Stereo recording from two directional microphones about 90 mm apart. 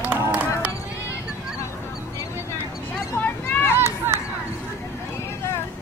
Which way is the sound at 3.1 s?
20° left (ahead or behind).